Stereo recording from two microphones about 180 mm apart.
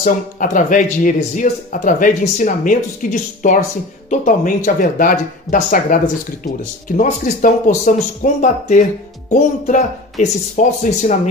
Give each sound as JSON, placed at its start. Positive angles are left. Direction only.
{"t": 0.0, "sound": "a man's voice", "side_deg": 45}